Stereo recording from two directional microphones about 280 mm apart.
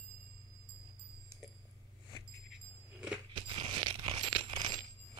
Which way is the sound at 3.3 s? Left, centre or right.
Centre.